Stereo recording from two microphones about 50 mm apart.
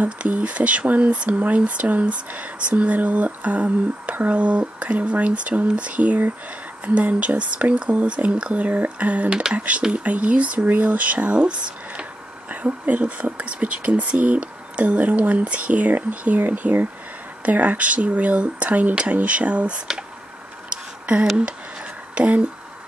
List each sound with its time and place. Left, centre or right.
0.0 s speech: right
22.1 s speech: right